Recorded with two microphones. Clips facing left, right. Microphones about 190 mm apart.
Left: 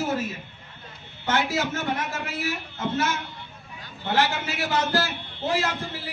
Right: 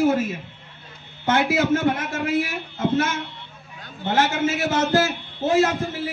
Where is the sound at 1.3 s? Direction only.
55° right (ahead or behind).